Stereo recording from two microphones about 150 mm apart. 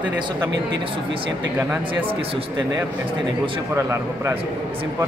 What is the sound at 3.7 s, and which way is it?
Speech, 15° right (ahead or behind).